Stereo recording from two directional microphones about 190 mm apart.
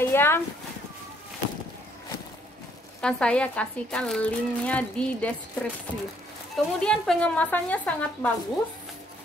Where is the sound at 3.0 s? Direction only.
5° left (ahead or behind).